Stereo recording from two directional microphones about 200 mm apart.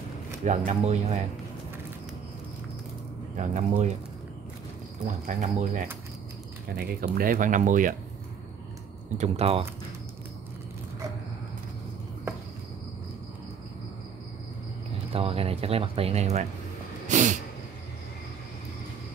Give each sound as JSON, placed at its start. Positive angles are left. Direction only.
{"t": 0.5, "sound": "speech", "side_deg": -35}
{"t": 3.3, "sound": "speech", "side_deg": -40}
{"t": 5.0, "sound": "speech", "side_deg": -40}
{"t": 6.8, "sound": "speech", "side_deg": -50}
{"t": 9.2, "sound": "speech", "side_deg": -30}
{"t": 15.1, "sound": "speech", "side_deg": -30}
{"t": 17.1, "sound": "a sound", "side_deg": -35}